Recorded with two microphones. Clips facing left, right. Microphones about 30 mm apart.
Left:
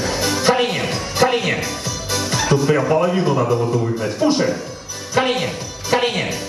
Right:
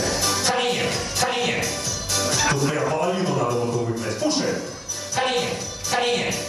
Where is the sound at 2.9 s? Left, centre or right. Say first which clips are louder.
Left 6 dB; left.